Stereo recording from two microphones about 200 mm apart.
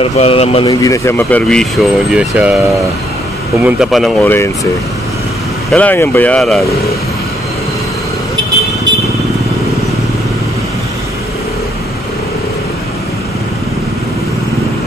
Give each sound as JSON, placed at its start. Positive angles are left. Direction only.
{"t": 0.0, "sound": "speech", "side_deg": 30}
{"t": 0.7, "sound": "speech", "side_deg": 15}
{"t": 3.6, "sound": "speech", "side_deg": 0}
{"t": 5.7, "sound": "speech", "side_deg": 5}